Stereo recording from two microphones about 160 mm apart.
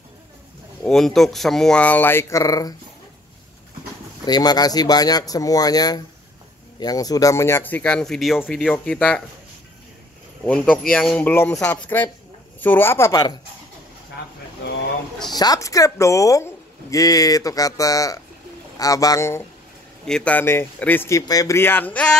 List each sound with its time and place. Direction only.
0.8 s speech: centre (ahead or behind); by 2.7 s 20° left (ahead or behind)
4.3 s a woman's voice: 25° left (ahead or behind); by 9.2 s 5° left (ahead or behind)
10.4 s speech: 10° left (ahead or behind)
15.3 s a woman's voice: 25° left (ahead or behind)
20.1 s speech: 5° left (ahead or behind)